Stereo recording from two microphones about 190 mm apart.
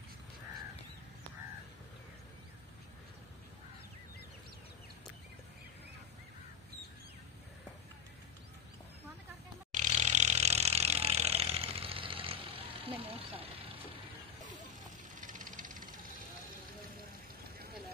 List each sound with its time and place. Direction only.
9.7 s chainsaw: 40° right (ahead or behind)
15.1 s vehicle: 45° right (ahead or behind)